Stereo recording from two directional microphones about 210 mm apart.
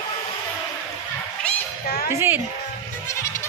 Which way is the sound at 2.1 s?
10° right (ahead or behind).